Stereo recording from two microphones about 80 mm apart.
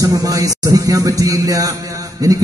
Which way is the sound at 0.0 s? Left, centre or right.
Right.